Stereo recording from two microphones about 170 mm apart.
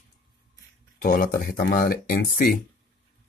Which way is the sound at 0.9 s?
55° left (ahead or behind).